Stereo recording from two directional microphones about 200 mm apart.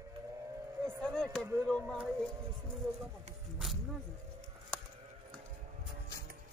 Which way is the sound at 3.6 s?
Centre (ahead or behind).